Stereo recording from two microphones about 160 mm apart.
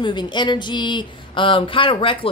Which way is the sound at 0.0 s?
30° left (ahead or behind).